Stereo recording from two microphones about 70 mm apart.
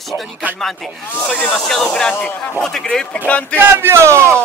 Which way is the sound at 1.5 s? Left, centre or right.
Centre.